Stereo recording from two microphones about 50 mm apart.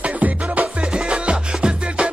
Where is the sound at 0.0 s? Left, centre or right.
Right.